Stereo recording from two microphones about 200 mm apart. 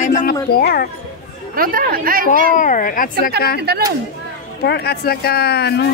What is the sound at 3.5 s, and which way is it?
Speech, 55° right (ahead or behind).